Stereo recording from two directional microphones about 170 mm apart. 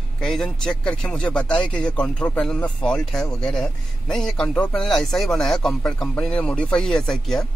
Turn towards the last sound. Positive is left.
turn(degrees=0)  # may be behind; listen again after turning